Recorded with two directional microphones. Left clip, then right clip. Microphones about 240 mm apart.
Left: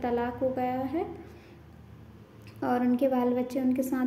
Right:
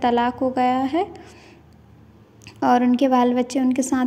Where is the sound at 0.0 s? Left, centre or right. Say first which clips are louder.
Right 9 dB; right.